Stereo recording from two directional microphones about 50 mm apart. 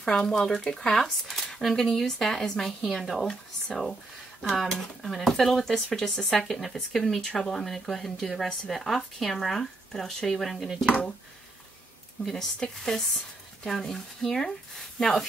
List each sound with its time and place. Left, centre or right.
0.0 s speech: centre
10.9 s speech: centre
12.3 s speech: centre